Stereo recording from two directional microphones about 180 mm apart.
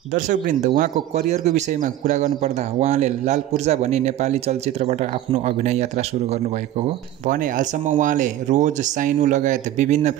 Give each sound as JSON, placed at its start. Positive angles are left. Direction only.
{"t": 0.1, "sound": "a man's voice", "side_deg": -45}